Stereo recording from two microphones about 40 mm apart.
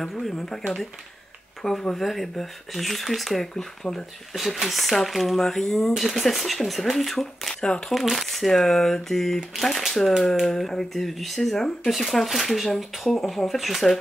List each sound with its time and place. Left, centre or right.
0.3 s speech: centre
3.8 s speech: left
4.3 s speech: centre
5.4 s speech: centre
5.9 s speech: centre